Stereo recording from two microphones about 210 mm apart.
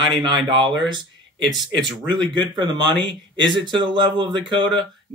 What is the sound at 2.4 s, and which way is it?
Speech, 20° right (ahead or behind).